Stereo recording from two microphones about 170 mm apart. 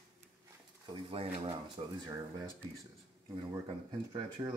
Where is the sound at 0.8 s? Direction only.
30° right (ahead or behind).